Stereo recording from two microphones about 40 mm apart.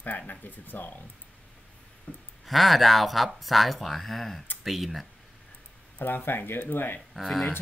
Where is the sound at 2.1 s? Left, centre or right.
Left.